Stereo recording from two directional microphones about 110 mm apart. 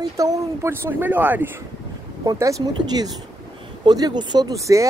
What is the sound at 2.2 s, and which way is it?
Speech, 30° right (ahead or behind).